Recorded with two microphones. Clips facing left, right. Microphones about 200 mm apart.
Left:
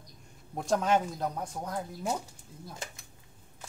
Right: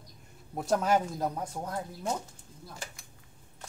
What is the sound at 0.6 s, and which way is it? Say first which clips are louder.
Speech: even; 5° right (ahead or behind).